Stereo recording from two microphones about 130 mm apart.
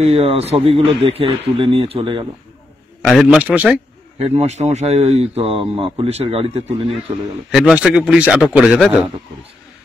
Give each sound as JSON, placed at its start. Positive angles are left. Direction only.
{"t": 0.0, "sound": "speech", "side_deg": -50}
{"t": 3.0, "sound": "a man's voice", "side_deg": 0}
{"t": 4.2, "sound": "speech", "side_deg": -55}
{"t": 7.5, "sound": "a man's voice", "side_deg": -5}